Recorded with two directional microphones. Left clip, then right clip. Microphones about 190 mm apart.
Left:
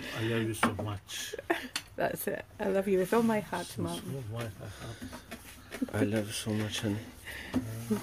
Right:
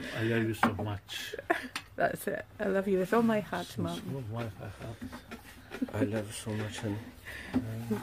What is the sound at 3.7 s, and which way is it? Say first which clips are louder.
Speech: even; 30° right (ahead or behind).